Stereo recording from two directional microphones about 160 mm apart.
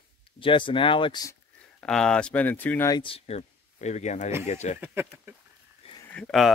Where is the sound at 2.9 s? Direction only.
30° left (ahead or behind).